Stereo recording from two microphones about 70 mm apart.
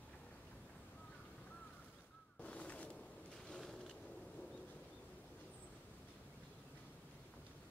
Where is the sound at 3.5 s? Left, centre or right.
Centre.